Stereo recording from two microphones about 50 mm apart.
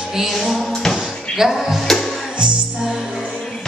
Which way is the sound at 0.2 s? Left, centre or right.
Centre.